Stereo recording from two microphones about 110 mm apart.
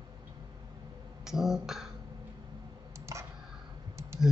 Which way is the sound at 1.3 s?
5° right (ahead or behind).